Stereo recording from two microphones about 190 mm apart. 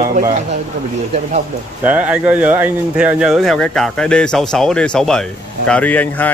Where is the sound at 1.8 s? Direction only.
10° right (ahead or behind).